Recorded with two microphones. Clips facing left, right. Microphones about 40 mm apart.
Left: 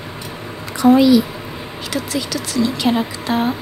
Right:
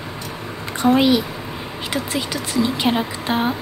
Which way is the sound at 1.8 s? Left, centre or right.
Right.